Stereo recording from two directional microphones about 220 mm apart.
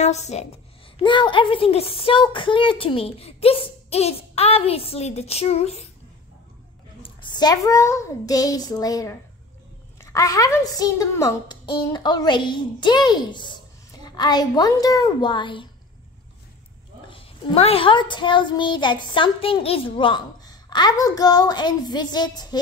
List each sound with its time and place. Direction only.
0.0 s a woman's voice: 30° left (ahead or behind)
7.0 s a child's voice: 20° left (ahead or behind)
17.1 s a woman's voice: 25° left (ahead or behind)